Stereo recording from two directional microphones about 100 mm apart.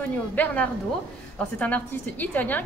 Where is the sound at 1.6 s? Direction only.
15° left (ahead or behind).